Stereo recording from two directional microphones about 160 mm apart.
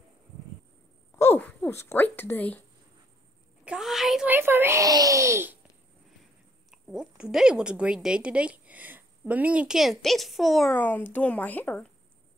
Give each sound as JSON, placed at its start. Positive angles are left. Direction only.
{"t": 1.1, "sound": "speech", "side_deg": 15}
{"t": 3.6, "sound": "a sound", "side_deg": -5}
{"t": 4.4, "sound": "speech", "side_deg": -15}
{"t": 6.7, "sound": "a woman's voice", "side_deg": -5}